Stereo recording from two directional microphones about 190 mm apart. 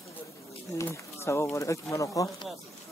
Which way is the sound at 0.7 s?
15° left (ahead or behind).